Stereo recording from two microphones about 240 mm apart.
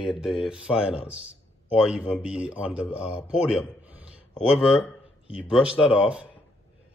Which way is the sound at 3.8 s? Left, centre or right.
Centre.